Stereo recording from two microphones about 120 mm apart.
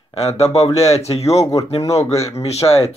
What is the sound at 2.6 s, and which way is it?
Speech, 30° left (ahead or behind).